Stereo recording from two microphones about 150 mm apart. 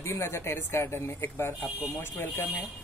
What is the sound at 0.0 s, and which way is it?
Speech, 20° left (ahead or behind).